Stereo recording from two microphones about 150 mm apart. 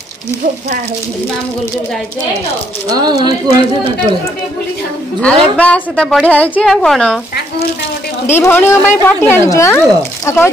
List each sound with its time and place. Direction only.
2.9 s speech: 25° right (ahead or behind)
5.2 s a woman's voice: 10° left (ahead or behind)
8.3 s speech: 15° left (ahead or behind)